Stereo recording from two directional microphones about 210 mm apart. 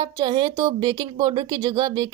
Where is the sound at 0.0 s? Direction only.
20° right (ahead or behind).